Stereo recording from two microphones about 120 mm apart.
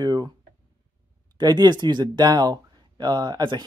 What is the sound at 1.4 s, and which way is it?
Speech, 35° right (ahead or behind).